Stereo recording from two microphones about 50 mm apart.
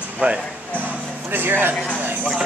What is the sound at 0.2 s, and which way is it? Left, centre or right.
Speech, right.